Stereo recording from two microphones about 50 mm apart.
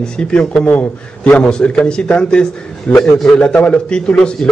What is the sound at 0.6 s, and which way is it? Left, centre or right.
A man's voice, left.